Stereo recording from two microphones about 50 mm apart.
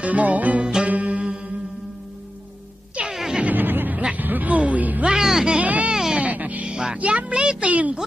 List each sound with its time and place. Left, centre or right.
0.0 s speech: right
0.8 s music: right
3.0 s music: centre
3.5 s a sound: right
4.2 s music: right
5.0 s music: centre
5.6 s music: right
6.7 s music: centre
7.0 s speech: right